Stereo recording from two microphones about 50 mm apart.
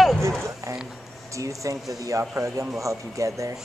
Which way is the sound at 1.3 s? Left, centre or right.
Right.